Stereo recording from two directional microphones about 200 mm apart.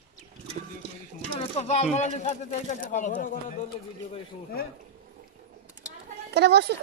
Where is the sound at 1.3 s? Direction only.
30° left (ahead or behind).